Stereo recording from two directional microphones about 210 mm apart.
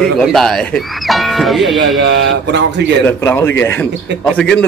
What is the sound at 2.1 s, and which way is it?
Speech, 55° right (ahead or behind).